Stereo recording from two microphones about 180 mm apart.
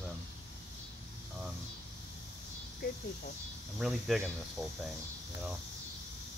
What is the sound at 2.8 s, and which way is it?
Speech, 60° left (ahead or behind).